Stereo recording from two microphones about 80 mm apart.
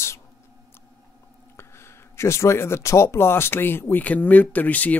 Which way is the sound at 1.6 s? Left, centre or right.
Left.